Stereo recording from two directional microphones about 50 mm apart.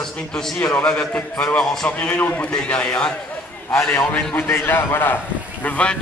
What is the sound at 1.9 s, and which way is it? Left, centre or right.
Speech, left.